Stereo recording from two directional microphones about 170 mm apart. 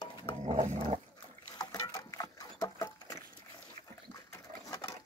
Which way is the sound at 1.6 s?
20° left (ahead or behind).